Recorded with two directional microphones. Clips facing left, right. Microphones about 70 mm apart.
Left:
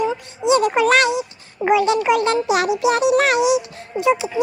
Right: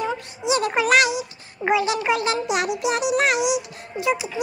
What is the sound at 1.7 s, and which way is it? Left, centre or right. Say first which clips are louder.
Speech: left 5 dB; right.